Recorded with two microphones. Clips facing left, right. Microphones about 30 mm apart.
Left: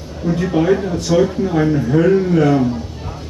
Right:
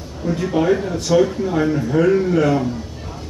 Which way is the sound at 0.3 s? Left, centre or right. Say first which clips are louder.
Left 2 dB; centre.